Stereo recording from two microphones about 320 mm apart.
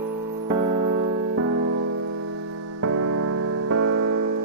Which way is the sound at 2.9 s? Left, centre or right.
Right.